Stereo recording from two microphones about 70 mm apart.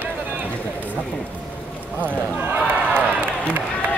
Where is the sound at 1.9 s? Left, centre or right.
Right.